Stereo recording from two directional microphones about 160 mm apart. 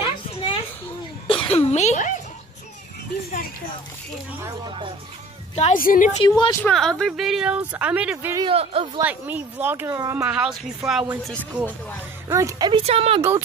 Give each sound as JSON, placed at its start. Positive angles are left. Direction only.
{"t": 0.0, "sound": "a sound", "side_deg": 30}
{"t": 4.6, "sound": "speech", "side_deg": -30}
{"t": 5.6, "sound": "a woman's voice", "side_deg": 60}
{"t": 6.2, "sound": "speech", "side_deg": 30}
{"t": 6.6, "sound": "speech", "side_deg": 5}
{"t": 8.4, "sound": "speech", "side_deg": -35}
{"t": 9.0, "sound": "speech", "side_deg": -10}
{"t": 10.2, "sound": "speech", "side_deg": -5}
{"t": 12.3, "sound": "a woman's voice", "side_deg": -20}
{"t": 12.8, "sound": "speech", "side_deg": -40}